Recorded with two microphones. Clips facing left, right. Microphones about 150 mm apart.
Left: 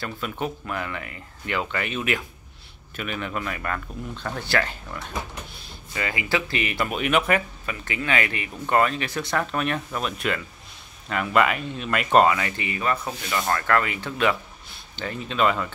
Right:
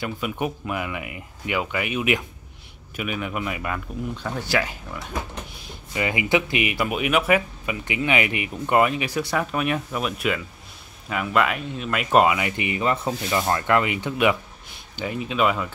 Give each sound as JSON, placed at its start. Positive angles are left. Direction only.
{"t": 0.0, "sound": "speech", "side_deg": -15}
{"t": 5.9, "sound": "speech", "side_deg": -20}